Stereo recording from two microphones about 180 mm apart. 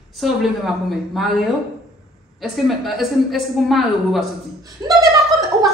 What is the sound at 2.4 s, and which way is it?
A woman's voice, centre (ahead or behind).